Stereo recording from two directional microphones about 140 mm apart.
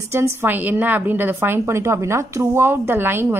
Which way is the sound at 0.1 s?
20° right (ahead or behind).